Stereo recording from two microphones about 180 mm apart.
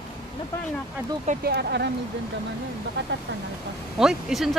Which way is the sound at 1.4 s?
65° right (ahead or behind).